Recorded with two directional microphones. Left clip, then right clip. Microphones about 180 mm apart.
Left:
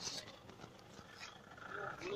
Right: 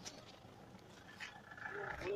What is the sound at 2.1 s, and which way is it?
Roaring cats, 50° right (ahead or behind).